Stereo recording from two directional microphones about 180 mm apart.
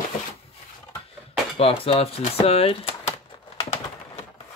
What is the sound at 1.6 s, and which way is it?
Speech, 35° left (ahead or behind).